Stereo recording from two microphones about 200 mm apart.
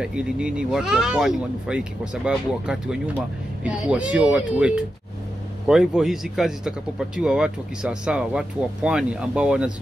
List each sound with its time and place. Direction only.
0.0 s speech: 5° right (ahead or behind)